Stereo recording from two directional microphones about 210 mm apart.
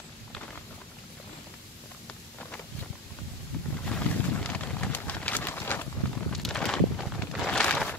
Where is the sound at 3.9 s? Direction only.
5° left (ahead or behind).